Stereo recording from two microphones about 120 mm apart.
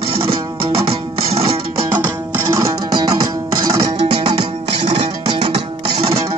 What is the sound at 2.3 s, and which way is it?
Music, 25° right (ahead or behind).